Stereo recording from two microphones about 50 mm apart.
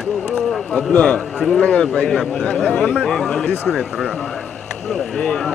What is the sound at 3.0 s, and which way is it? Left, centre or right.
A man's voice, centre.